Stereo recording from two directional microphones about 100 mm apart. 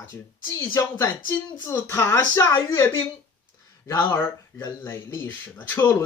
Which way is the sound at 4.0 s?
25° left (ahead or behind).